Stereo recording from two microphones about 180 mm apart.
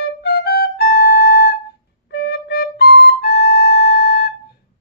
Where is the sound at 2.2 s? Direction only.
65° left (ahead or behind).